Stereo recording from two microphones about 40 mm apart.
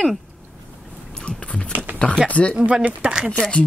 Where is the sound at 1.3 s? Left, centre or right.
Left.